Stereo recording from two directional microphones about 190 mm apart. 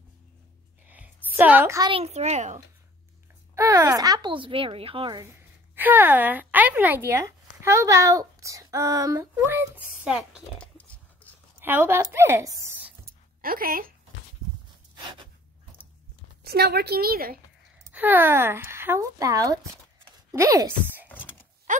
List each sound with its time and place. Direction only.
0.8 s a sound: 10° right (ahead or behind)
1.9 s a child's voice: 30° right (ahead or behind)
3.5 s speech: 15° right (ahead or behind)
5.2 s a woman's voice: 10° right (ahead or behind)
10.0 s a sound: 5° right (ahead or behind)
11.6 s speech: 10° right (ahead or behind)
13.4 s a woman's voice: 50° right (ahead or behind)
15.0 s gasp: 25° right (ahead or behind)
16.4 s a woman's voice: 55° right (ahead or behind)
17.9 s speech: 10° right (ahead or behind)
21.7 s a sound: 40° right (ahead or behind)